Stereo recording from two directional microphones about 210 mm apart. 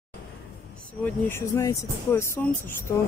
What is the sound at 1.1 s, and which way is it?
Speech, 10° left (ahead or behind).